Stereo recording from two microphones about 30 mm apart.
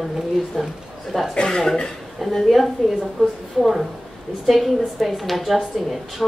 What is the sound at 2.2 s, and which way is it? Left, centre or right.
Speech, centre.